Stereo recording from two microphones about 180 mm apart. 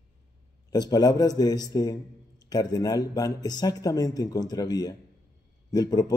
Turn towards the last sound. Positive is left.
turn(degrees=20)  # may be behind; listen again after turning